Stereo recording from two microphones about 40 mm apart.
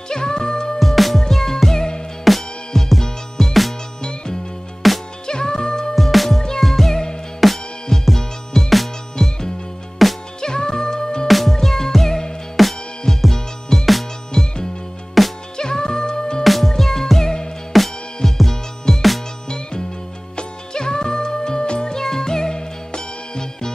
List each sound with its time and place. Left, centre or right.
0.1 s music: centre
0.7 s music: centre
4.8 s music: centre
5.2 s music: centre
5.9 s music: centre
10.4 s music: centre
11.2 s music: centre
15.2 s music: centre
15.5 s music: centre
16.4 s music: centre
19.5 s music: centre